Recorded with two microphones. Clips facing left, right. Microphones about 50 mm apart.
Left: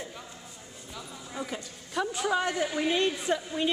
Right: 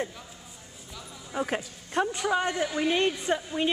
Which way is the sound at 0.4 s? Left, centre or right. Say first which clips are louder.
Left 2 dB; centre.